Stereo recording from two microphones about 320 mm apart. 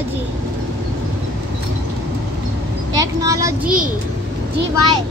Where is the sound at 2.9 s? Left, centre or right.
Centre.